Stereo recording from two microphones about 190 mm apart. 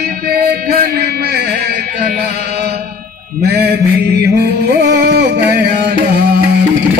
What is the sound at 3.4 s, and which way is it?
A man's voice, 60° right (ahead or behind).